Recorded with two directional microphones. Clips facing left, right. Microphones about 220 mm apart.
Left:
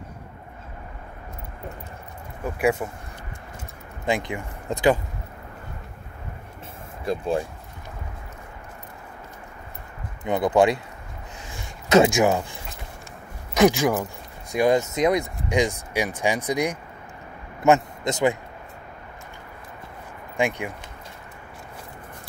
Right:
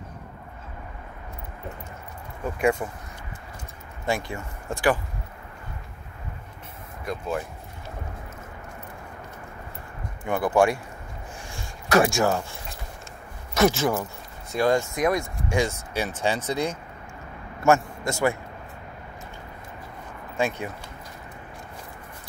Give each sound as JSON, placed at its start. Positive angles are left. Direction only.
{"t": 2.4, "sound": "speech", "side_deg": 10}
{"t": 4.0, "sound": "speech", "side_deg": 20}
{"t": 7.1, "sound": "speech", "side_deg": 30}
{"t": 10.2, "sound": "speech", "side_deg": 20}
{"t": 11.5, "sound": "a sound", "side_deg": 20}
{"t": 12.3, "sound": "speech", "side_deg": 15}
{"t": 13.6, "sound": "a man's voice", "side_deg": 15}
{"t": 20.3, "sound": "speech", "side_deg": 15}